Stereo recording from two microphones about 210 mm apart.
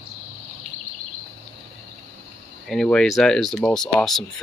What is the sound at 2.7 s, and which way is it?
Speech, 5° left (ahead or behind).